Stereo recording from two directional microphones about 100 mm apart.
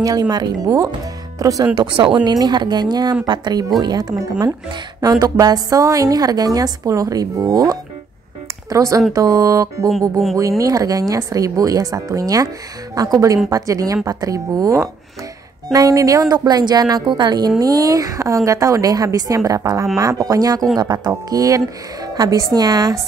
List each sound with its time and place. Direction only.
0.0 s a woman's voice: 40° right (ahead or behind)
1.8 s a woman's voice: 60° right (ahead or behind); by 22.9 s 40° right (ahead or behind)